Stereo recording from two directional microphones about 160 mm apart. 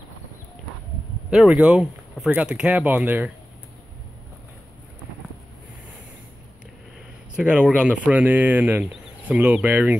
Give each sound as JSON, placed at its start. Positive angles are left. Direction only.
{"t": 1.3, "sound": "speech", "side_deg": -5}
{"t": 7.3, "sound": "speech", "side_deg": -5}